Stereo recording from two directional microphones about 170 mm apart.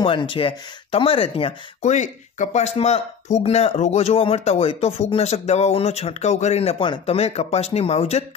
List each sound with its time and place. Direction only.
0.0 s speech: 30° left (ahead or behind)